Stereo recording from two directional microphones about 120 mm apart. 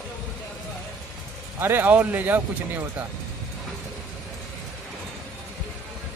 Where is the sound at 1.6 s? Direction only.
15° right (ahead or behind).